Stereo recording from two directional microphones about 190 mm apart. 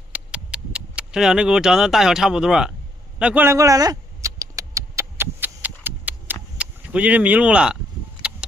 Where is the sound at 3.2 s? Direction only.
10° right (ahead or behind).